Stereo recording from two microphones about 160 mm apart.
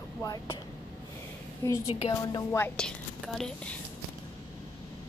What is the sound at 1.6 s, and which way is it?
A woman's voice, 20° left (ahead or behind).